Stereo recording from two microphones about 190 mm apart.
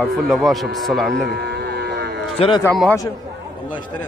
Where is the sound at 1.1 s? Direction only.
60° right (ahead or behind).